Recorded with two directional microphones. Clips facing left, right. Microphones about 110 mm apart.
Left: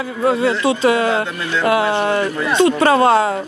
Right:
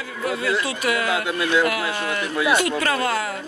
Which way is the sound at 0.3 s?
30° left (ahead or behind).